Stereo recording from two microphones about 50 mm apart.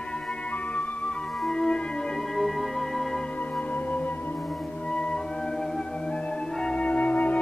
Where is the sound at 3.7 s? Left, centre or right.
Left.